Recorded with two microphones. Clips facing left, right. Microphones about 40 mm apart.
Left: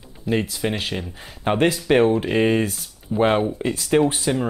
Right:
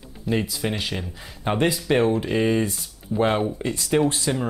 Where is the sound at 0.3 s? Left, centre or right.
Centre.